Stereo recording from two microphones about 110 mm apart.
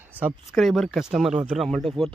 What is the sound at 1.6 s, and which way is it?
Speech, centre (ahead or behind).